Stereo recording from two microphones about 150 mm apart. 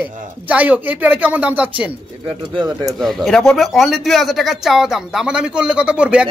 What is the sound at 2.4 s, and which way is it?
Speech, 30° right (ahead or behind).